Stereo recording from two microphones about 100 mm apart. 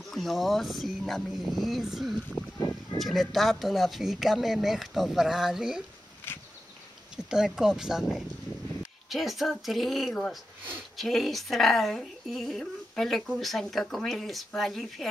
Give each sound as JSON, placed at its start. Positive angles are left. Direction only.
{"t": 0.1, "sound": "speech", "side_deg": 0}
{"t": 7.2, "sound": "speech", "side_deg": -5}